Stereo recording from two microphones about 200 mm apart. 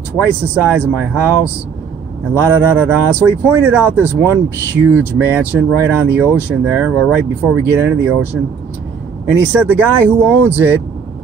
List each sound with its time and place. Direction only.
0.2 s speech: 10° right (ahead or behind)
2.5 s speech: 5° right (ahead or behind)
9.2 s speech: 5° right (ahead or behind)